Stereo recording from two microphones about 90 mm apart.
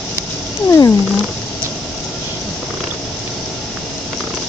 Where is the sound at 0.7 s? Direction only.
30° left (ahead or behind).